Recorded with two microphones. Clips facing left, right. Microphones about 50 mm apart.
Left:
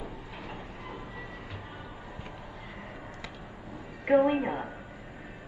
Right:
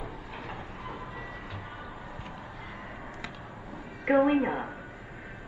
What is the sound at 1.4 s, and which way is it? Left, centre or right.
Music, right.